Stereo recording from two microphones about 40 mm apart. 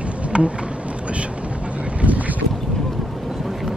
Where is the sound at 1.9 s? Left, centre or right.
Right.